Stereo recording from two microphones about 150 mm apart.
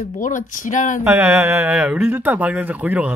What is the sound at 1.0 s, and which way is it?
Speech, 10° right (ahead or behind).